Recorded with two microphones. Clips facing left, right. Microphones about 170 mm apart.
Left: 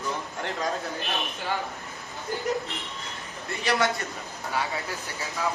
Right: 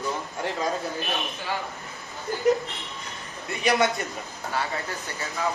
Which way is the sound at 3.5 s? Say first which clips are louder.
Right 3 dB; 20° right (ahead or behind).